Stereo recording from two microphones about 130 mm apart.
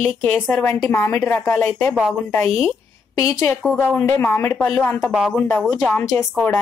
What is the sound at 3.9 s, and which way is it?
Speech, 15° left (ahead or behind).